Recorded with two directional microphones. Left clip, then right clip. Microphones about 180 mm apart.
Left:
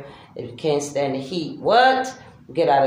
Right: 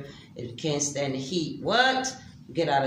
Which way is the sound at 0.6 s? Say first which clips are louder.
Left 7 dB; 15° right (ahead or behind).